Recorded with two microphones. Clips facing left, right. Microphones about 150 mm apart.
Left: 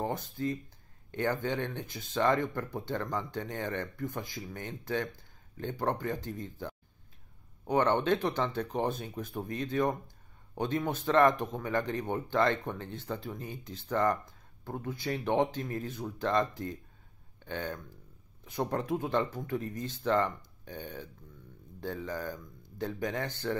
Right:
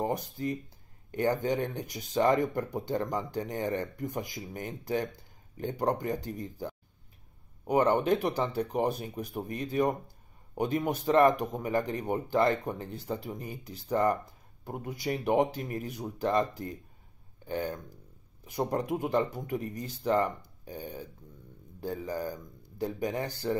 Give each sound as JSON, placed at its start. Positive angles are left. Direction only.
{"t": 0.0, "sound": "speech", "side_deg": -15}
{"t": 18.4, "sound": "speech", "side_deg": -10}